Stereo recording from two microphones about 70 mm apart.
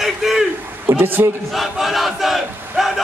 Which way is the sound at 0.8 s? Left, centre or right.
Right.